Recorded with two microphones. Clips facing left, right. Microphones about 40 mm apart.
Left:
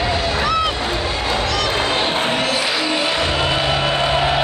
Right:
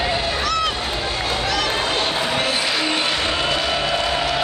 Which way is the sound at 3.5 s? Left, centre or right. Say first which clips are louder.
Left 2 dB; centre.